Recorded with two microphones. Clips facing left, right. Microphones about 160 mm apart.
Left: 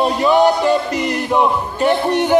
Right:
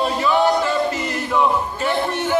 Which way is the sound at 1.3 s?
15° left (ahead or behind).